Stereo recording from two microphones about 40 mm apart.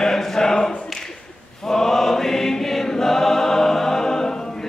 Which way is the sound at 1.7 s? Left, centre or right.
Centre.